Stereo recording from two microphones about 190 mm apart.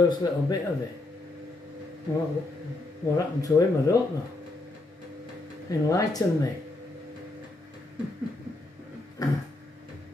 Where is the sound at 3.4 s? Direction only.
15° left (ahead or behind).